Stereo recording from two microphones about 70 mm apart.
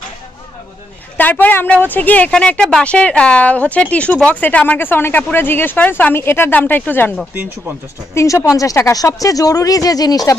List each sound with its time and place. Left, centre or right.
1.1 s a woman's voice: left
6.1 s speech: left
8.1 s speech: left
8.5 s speech: left